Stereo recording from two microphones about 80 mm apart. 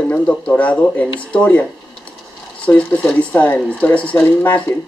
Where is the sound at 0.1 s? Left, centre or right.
Centre.